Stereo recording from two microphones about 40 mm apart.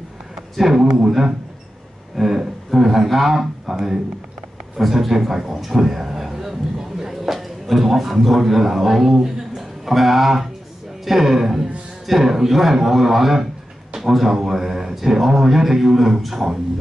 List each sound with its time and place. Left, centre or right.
0.6 s speech: centre
2.1 s a sound: centre
4.7 s a man's voice: centre